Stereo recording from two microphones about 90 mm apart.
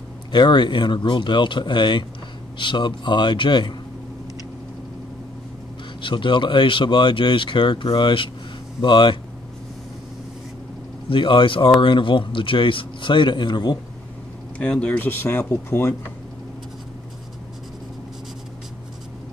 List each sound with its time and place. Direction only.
0.3 s speech: 60° left (ahead or behind)
5.9 s speech: 65° left (ahead or behind)
11.1 s speech: 65° left (ahead or behind)
14.6 s speech: 15° left (ahead or behind)